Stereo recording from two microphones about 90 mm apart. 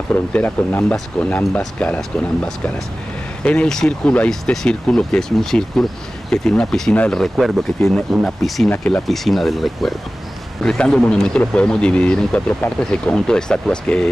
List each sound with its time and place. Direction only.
0.1 s speech: 15° left (ahead or behind)
7.3 s speech: centre (ahead or behind)
8.6 s speech: 15° left (ahead or behind)
9.0 s speech: centre (ahead or behind)